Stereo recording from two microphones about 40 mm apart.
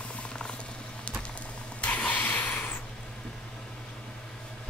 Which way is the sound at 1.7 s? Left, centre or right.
Left.